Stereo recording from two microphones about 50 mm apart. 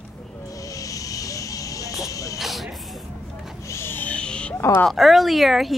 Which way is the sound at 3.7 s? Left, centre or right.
Left.